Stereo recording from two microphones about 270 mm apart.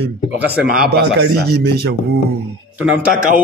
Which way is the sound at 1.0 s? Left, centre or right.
Right.